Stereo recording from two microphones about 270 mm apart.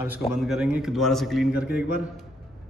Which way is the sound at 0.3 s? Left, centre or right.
Centre.